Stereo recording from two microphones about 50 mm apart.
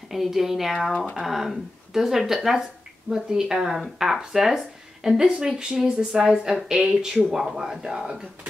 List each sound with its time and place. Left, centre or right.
0.1 s speech: centre